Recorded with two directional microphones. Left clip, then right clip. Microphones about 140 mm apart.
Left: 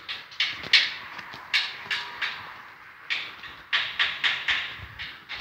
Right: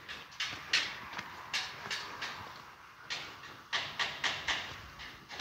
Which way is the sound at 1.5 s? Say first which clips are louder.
Left 12 dB; 55° right (ahead or behind).